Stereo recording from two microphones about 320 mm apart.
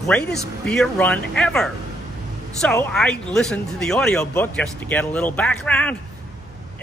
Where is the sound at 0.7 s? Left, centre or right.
Centre.